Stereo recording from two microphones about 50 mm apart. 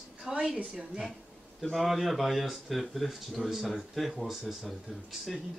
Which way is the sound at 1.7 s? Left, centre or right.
Centre.